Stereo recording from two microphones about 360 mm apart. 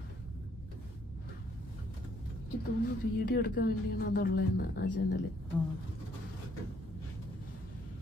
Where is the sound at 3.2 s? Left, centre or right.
Left.